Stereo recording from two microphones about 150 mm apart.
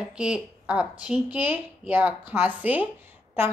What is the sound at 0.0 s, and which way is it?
A woman's voice, 5° right (ahead or behind).